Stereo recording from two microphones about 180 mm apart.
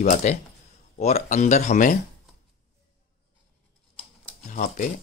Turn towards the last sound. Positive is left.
turn(degrees=40)  # may be behind; listen again after turning